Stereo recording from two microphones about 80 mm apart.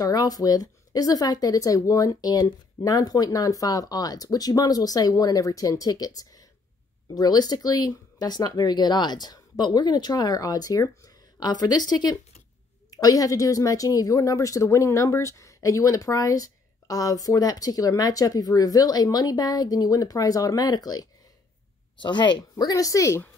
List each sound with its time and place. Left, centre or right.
0.0 s a woman's voice: left
21.9 s a woman's voice: left